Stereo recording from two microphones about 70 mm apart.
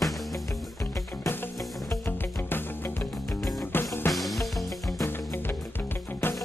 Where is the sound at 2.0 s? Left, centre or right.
Left.